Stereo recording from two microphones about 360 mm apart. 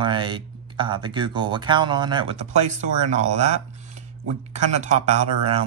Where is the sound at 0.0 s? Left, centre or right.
Centre.